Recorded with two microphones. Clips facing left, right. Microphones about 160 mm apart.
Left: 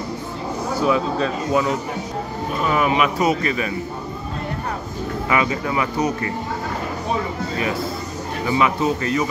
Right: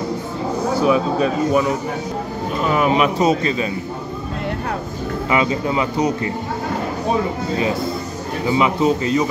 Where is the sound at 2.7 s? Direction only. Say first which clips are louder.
Right 2 dB; 35° right (ahead or behind).